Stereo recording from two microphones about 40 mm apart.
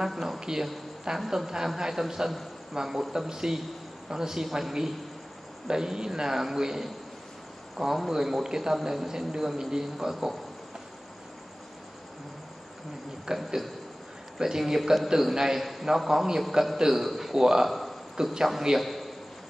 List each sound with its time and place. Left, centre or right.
0.1 s a woman's voice: centre
0.4 s a man's voice: centre
13.3 s a man's voice: centre
17.6 s a sound: centre
18.2 s a man's voice: centre
18.8 s a sound: centre